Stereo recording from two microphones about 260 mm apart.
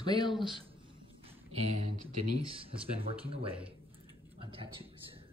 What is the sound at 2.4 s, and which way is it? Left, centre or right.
Speech, right.